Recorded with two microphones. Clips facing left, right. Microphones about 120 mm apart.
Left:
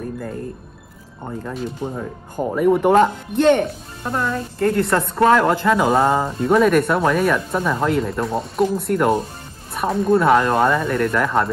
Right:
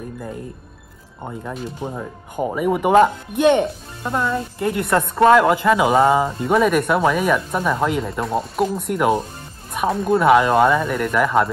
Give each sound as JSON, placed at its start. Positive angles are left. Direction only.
{"t": 1.8, "sound": "speech", "side_deg": -15}